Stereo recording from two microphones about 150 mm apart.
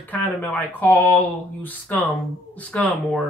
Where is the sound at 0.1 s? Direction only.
10° left (ahead or behind).